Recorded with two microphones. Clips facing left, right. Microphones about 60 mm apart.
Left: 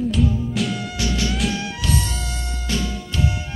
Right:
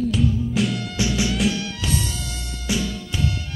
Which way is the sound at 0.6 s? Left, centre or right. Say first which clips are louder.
Right 1 dB; centre.